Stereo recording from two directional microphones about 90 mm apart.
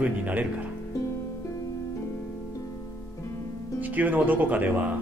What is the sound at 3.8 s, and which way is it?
Speech, 20° right (ahead or behind).